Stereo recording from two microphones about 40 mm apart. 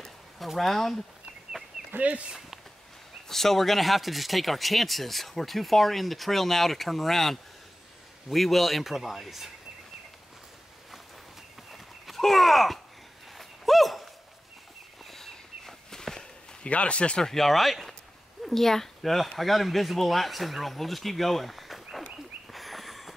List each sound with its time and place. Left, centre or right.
0.4 s speech: centre
1.9 s speech: right
3.3 s speech: centre
11.7 s horse: centre
13.4 s dog: centre
15.0 s walk: centre
16.6 s speech: left
17.2 s speech: centre
22.5 s a sound: centre